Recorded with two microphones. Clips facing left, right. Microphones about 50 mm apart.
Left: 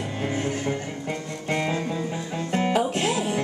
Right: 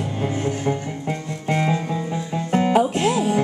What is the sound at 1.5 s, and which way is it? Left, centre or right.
Music, centre.